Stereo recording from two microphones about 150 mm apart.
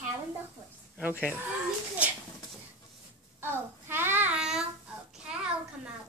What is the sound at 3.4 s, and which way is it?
Child singing, 15° right (ahead or behind).